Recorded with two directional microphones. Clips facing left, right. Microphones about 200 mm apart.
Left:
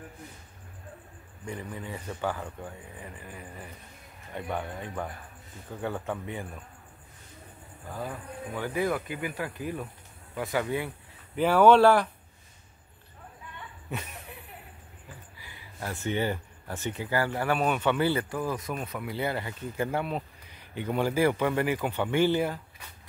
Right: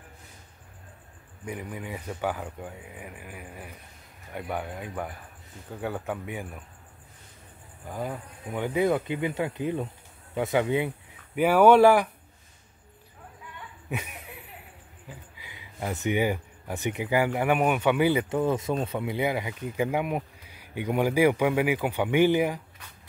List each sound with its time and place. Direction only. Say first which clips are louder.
1.4 s speech: right 2 dB; 10° right (ahead or behind)
8.5 s speech: right 5 dB; 20° right (ahead or behind)
13.8 s speech: right 3 dB; 10° right (ahead or behind)